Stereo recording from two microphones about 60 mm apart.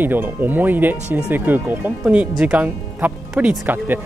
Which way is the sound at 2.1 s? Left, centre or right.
Right.